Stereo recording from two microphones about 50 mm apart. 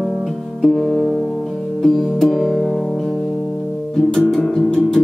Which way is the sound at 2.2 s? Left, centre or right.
Centre.